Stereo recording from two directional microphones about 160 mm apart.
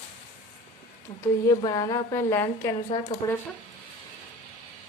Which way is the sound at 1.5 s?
25° left (ahead or behind).